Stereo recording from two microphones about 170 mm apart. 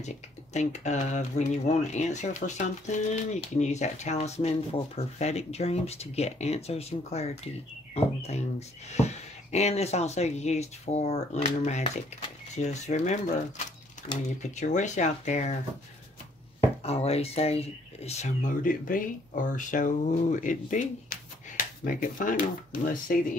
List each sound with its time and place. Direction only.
0.0 s speech: 40° left (ahead or behind)
14.4 s speech: 45° left (ahead or behind)
16.8 s speech: 35° left (ahead or behind); by 23.1 s 55° left (ahead or behind)